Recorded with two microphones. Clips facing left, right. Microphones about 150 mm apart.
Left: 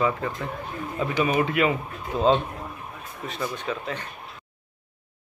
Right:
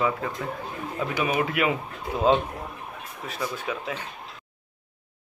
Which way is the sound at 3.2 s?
Centre (ahead or behind).